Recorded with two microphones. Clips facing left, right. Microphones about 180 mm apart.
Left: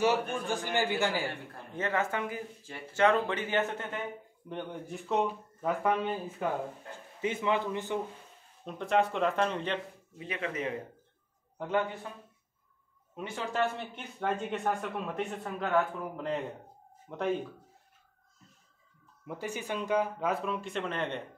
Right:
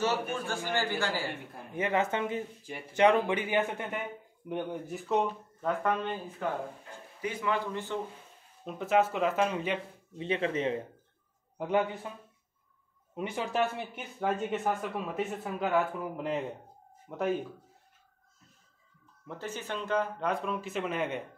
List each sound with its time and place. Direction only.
0.0 s speech: 15° left (ahead or behind)
1.5 s a man's voice: 15° right (ahead or behind); by 6.1 s 5° left (ahead or behind)
7.2 s a man's voice: 25° left (ahead or behind)
8.6 s speech: 5° right (ahead or behind)
10.1 s a man's voice: 30° right (ahead or behind)
11.5 s a man's voice: 15° right (ahead or behind)
13.1 s speech: 20° right (ahead or behind)
19.2 s speech: 10° left (ahead or behind); by 21.3 s 5° right (ahead or behind)